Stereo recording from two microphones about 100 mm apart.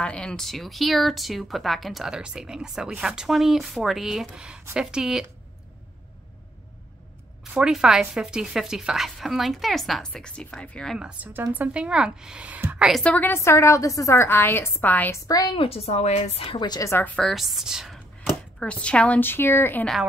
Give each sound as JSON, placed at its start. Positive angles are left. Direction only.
{"t": 0.0, "sound": "speech", "side_deg": 10}
{"t": 7.5, "sound": "speech", "side_deg": -5}
{"t": 11.2, "sound": "a woman's voice", "side_deg": -15}
{"t": 13.0, "sound": "a woman's voice", "side_deg": 15}
{"t": 15.2, "sound": "a woman's voice", "side_deg": 40}
{"t": 15.5, "sound": "a woman's voice", "side_deg": 80}
{"t": 16.5, "sound": "a woman's voice", "side_deg": 45}
{"t": 17.0, "sound": "a woman's voice", "side_deg": 15}
{"t": 17.3, "sound": "speech", "side_deg": 0}
{"t": 18.2, "sound": "speech", "side_deg": 10}